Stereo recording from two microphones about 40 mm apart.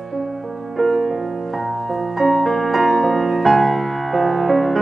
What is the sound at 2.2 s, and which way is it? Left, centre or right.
Music, centre.